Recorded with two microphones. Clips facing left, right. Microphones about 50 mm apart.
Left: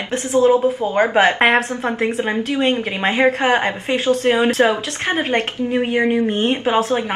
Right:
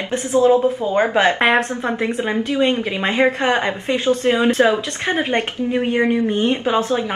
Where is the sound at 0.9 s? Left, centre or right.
Centre.